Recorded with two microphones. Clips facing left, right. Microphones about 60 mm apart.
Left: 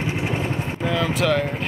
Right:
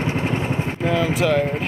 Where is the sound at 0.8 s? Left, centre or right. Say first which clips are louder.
Right 2 dB; centre.